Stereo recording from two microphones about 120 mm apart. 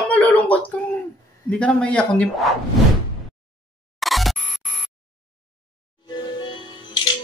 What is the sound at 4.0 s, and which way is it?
Camera, centre (ahead or behind).